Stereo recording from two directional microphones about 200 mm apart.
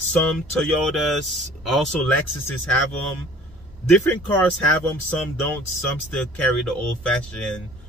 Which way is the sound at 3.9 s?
10° left (ahead or behind).